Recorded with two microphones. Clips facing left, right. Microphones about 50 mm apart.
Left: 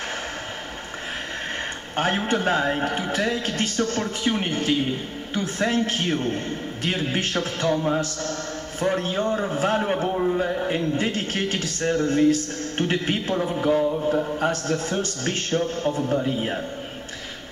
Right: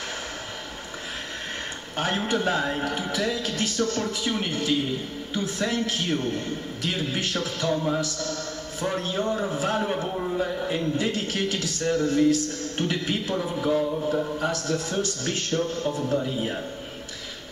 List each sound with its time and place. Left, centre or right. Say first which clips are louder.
2.2 s a man's voice: left 3 dB; left